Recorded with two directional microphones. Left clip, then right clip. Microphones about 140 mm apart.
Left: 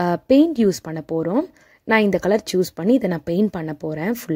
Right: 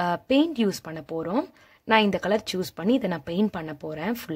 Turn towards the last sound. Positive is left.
turn(degrees=40)  # may be behind; listen again after turning